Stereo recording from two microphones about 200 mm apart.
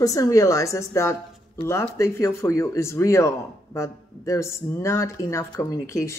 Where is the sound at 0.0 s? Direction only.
15° left (ahead or behind).